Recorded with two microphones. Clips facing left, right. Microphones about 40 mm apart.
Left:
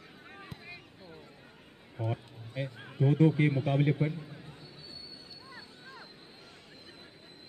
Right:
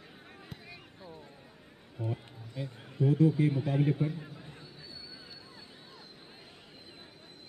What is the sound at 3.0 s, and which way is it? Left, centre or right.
Speech, left.